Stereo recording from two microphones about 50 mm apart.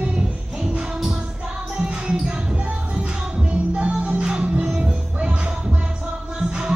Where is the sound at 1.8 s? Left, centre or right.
Centre.